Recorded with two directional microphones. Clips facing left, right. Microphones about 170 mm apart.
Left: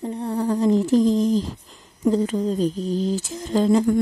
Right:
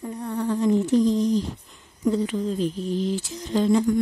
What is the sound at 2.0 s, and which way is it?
Speech, 40° left (ahead or behind).